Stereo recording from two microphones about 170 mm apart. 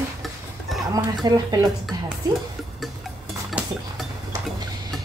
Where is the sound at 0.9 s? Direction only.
20° right (ahead or behind).